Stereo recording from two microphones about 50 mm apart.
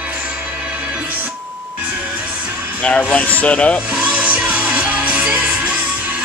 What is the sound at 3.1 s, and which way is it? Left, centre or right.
Speech, left.